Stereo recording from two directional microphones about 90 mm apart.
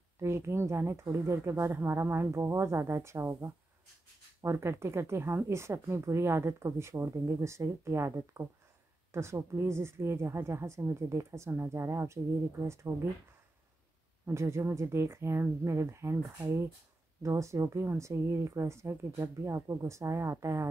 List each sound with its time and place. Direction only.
0.2 s speech: 30° right (ahead or behind)
14.2 s speech: 35° right (ahead or behind)